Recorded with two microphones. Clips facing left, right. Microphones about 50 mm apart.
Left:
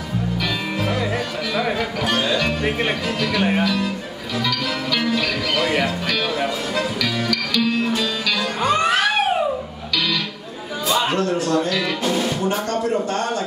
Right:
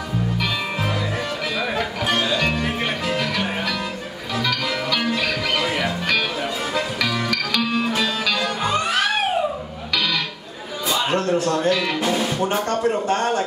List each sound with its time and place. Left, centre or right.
3.2 s music: right
6.7 s music: right
11.1 s music: right
12.4 s speech: right